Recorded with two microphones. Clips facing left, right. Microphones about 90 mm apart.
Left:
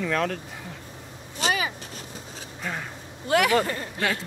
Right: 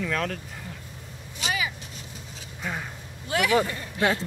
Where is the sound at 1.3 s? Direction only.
40° left (ahead or behind).